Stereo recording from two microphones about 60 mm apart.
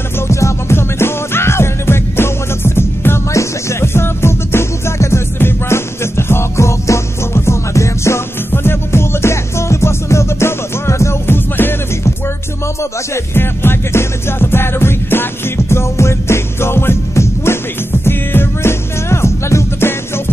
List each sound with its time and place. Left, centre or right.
0.3 s music: left
8.5 s music: left
13.1 s music: left